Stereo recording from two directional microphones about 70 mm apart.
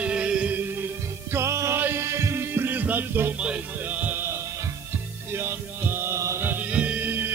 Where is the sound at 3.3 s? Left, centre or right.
Centre.